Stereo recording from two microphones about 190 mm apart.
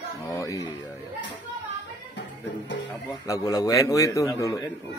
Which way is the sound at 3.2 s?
20° left (ahead or behind).